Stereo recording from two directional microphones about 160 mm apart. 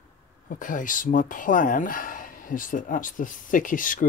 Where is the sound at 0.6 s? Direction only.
55° left (ahead or behind).